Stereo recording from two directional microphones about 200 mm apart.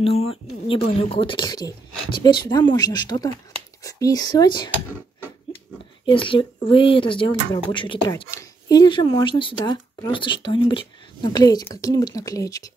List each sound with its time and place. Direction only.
0.0 s speech: 30° left (ahead or behind)
6.0 s speech: 25° left (ahead or behind)